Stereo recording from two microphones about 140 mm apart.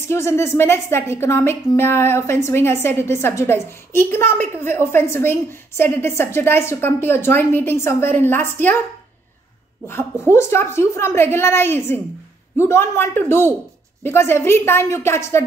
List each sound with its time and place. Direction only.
0.0 s a woman's voice: 20° left (ahead or behind)
10.2 s a woman's voice: 15° left (ahead or behind)